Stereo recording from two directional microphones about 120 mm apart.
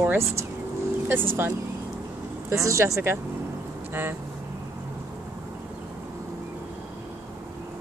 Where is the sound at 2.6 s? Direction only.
25° right (ahead or behind).